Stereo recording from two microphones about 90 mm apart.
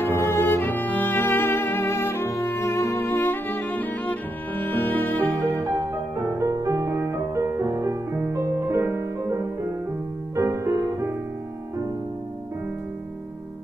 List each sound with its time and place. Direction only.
0.0 s music: 25° left (ahead or behind)
5.5 s music: 25° right (ahead or behind)